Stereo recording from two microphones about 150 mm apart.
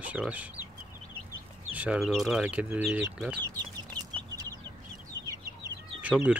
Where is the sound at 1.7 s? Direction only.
10° right (ahead or behind).